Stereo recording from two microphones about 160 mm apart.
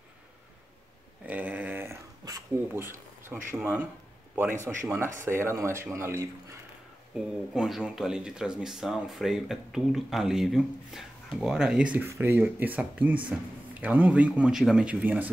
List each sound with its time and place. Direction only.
1.2 s a sound: 10° right (ahead or behind)
4.4 s speech: 15° right (ahead or behind)
7.2 s speech: 5° right (ahead or behind)